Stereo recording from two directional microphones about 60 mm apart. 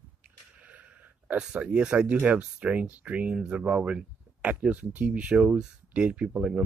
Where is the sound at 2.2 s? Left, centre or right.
Centre.